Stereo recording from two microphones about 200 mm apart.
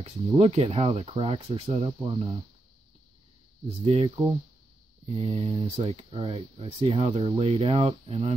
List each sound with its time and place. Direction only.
0.4 s speech: 30° right (ahead or behind)
3.8 s speech: 30° right (ahead or behind)
5.1 s speech: 30° right (ahead or behind)